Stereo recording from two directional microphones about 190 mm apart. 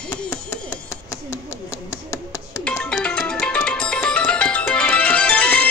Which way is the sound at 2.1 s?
15° left (ahead or behind).